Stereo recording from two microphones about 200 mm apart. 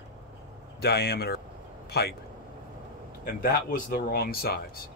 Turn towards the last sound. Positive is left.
turn(degrees=50)  # may be behind; listen again after turning